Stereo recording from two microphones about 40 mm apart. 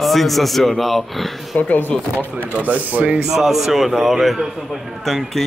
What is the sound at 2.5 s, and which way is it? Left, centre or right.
Speech, right.